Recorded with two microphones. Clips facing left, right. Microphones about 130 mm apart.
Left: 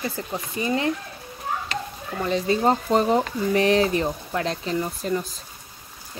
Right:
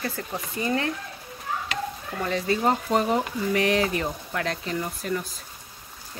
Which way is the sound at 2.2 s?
25° left (ahead or behind).